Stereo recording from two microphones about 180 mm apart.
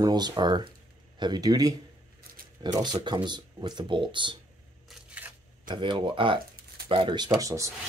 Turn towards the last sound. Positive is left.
turn(degrees=-15)  # may be behind; listen again after turning